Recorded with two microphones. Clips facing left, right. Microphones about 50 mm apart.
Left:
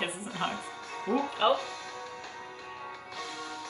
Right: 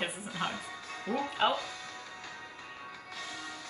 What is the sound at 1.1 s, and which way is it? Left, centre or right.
Speech, left.